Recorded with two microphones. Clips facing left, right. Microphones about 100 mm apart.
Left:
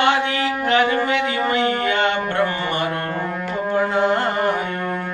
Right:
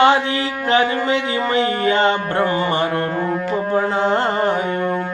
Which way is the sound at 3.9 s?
25° right (ahead or behind).